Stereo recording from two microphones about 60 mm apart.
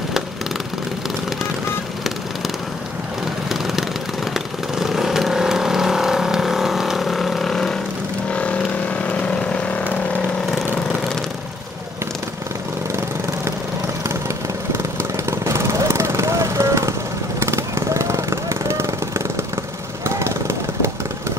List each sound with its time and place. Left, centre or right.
3.4 s vehicle: centre
8.3 s vehicle: left
14.8 s vehicle: right